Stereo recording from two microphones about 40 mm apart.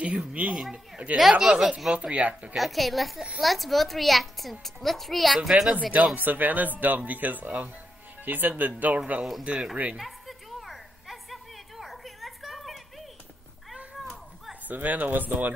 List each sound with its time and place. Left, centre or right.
0.0 s speech: right
0.5 s speech: centre
1.0 s speech: right
1.4 s speech: centre
2.0 s speech: right
2.5 s a child's voice: centre
5.7 s speech: right
6.1 s speech: right
9.4 s speech: right
9.9 s a sound: centre
14.7 s speech: right